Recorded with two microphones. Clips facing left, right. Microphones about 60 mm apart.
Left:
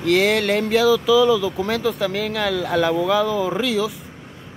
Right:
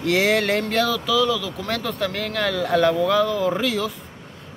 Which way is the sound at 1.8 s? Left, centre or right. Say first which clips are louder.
Left 4 dB; centre.